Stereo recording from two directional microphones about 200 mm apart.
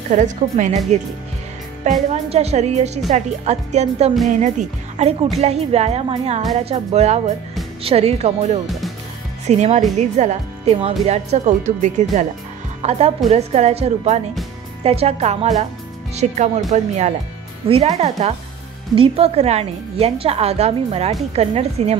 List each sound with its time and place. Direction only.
0.1 s a woman's voice: 40° right (ahead or behind)
1.9 s a woman's voice: 35° right (ahead or behind)